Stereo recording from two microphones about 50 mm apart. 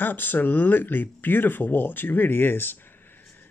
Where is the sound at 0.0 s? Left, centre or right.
Left.